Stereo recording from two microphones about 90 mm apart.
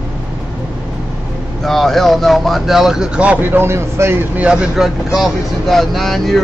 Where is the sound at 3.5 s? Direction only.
30° right (ahead or behind).